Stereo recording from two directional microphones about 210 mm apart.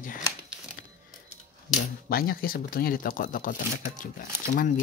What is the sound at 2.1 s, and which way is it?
Speech, 45° left (ahead or behind).